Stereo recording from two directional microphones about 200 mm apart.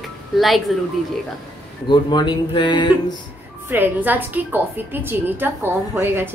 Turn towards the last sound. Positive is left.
turn(degrees=-10)  # may be behind; listen again after turning